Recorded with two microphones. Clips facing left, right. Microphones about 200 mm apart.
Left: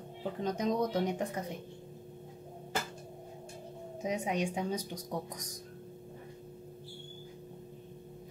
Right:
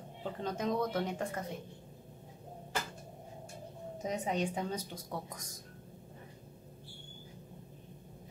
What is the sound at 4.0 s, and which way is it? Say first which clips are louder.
Speech: left 1 dB; 10° left (ahead or behind).